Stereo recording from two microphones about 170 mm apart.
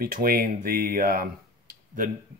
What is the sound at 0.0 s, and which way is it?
Speech, 60° right (ahead or behind).